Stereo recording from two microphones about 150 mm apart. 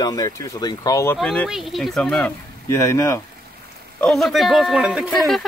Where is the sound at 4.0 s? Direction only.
Centre (ahead or behind).